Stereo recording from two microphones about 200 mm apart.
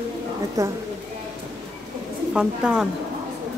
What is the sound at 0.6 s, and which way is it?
Speech, 15° right (ahead or behind).